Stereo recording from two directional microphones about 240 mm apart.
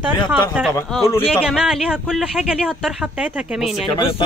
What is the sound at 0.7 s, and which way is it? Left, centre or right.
Speech, centre.